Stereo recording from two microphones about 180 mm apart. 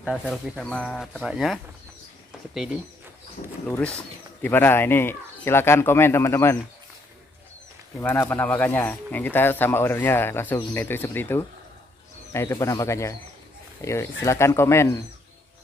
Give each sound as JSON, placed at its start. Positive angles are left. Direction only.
{"t": 0.0, "sound": "speech", "side_deg": 0}
{"t": 8.0, "sound": "speech", "side_deg": 10}